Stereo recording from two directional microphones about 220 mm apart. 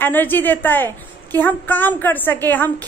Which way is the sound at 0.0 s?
10° left (ahead or behind).